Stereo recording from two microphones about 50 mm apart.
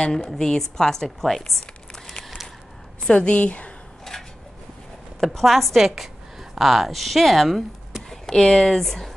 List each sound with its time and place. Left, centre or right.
0.0 s a woman's voice: centre
3.0 s a woman's voice: left
4.1 s a sound: centre
5.2 s a woman's voice: centre